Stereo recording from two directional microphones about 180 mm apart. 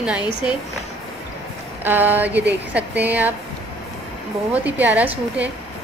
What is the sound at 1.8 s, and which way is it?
A woman's voice, 10° right (ahead or behind).